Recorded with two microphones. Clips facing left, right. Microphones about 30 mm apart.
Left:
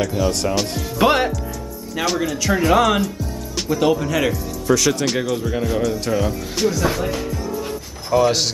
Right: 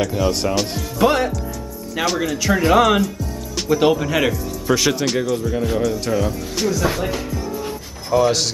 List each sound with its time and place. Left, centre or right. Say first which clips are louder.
0.0 s speech: right 1 dB; centre
0.9 s speech: even; centre
2.0 s speech: right 1 dB; centre
4.9 s speech: right 1 dB; centre
5.4 s speech: right 1 dB; centre
5.7 s speech: even; centre